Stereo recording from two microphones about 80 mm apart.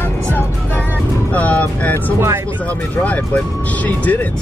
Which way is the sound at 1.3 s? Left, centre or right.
Centre.